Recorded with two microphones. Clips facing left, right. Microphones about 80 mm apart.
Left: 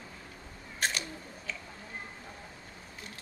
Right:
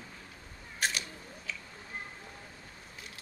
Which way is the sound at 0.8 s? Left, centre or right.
Centre.